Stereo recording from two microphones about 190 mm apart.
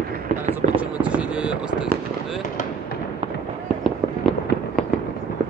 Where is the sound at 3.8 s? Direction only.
5° left (ahead or behind).